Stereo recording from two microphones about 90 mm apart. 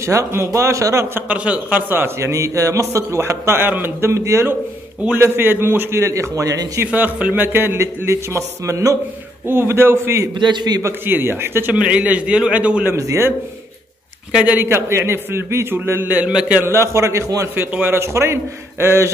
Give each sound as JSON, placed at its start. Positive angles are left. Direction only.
{"t": 0.0, "sound": "a man's voice", "side_deg": -35}
{"t": 1.3, "sound": "a man's voice", "side_deg": -15}
{"t": 6.8, "sound": "a man's voice", "side_deg": -20}
{"t": 10.4, "sound": "a man's voice", "side_deg": -55}
{"t": 10.8, "sound": "a man's voice", "side_deg": -25}
{"t": 11.7, "sound": "a man's voice", "side_deg": -15}
{"t": 12.8, "sound": "a man's voice", "side_deg": -35}
{"t": 14.3, "sound": "a man's voice", "side_deg": -15}
{"t": 14.6, "sound": "a man's voice", "side_deg": -30}
{"t": 16.6, "sound": "a man's voice", "side_deg": -30}
{"t": 17.6, "sound": "a man's voice", "side_deg": -25}